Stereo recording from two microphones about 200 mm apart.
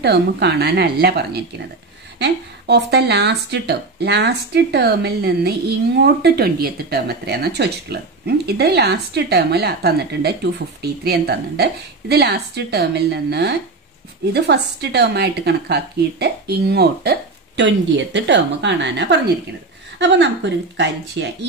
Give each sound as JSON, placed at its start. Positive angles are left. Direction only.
{"t": 0.0, "sound": "speech", "side_deg": -55}